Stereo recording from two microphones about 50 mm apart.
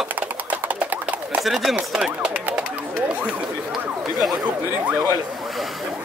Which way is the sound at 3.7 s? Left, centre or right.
Centre.